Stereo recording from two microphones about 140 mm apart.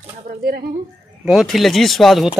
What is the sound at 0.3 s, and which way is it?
Speech, 90° right.